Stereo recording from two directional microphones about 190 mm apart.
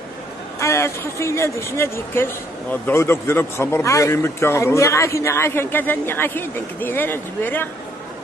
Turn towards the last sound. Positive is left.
turn(degrees=10)  # may be behind; listen again after turning